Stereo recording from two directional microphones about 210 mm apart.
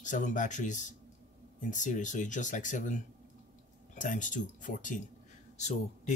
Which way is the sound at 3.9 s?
35° left (ahead or behind).